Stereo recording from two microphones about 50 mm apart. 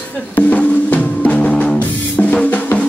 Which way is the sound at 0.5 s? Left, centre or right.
Left.